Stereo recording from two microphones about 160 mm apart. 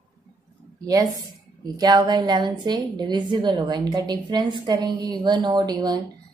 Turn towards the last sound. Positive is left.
turn(degrees=-25)  # may be behind; listen again after turning